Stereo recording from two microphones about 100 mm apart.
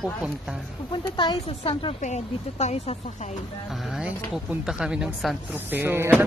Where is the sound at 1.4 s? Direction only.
90° left.